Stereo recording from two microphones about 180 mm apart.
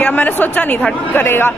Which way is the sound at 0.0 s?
10° left (ahead or behind).